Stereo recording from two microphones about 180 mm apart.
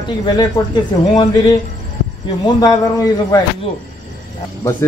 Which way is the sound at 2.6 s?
20° left (ahead or behind).